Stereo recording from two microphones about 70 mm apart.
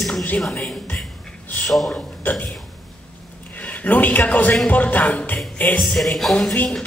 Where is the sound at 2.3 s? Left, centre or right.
Left.